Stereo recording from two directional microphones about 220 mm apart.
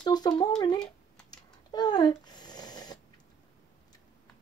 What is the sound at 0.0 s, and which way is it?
Speech, 20° left (ahead or behind).